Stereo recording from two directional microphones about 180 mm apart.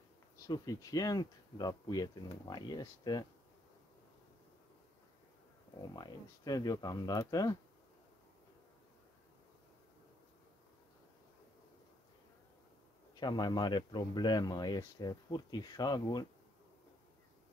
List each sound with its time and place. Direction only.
0.4 s speech: 20° left (ahead or behind)
5.8 s speech: 20° left (ahead or behind)
13.1 s speech: 25° left (ahead or behind)